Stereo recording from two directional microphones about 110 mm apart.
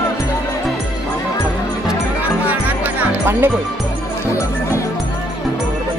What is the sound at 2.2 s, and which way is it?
Music, 15° right (ahead or behind).